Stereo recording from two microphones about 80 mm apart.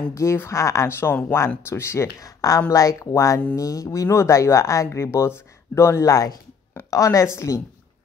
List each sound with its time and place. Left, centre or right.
0.1 s speech: left